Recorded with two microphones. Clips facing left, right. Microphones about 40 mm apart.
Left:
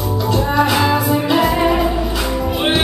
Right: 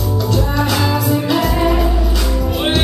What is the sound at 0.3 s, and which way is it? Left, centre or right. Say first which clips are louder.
Music: left 4 dB; centre.